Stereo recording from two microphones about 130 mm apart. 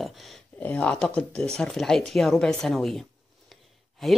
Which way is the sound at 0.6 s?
15° left (ahead or behind).